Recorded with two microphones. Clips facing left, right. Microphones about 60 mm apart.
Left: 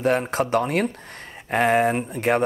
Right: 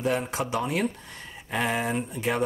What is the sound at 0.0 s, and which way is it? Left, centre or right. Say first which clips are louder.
Speech: left 6 dB; left.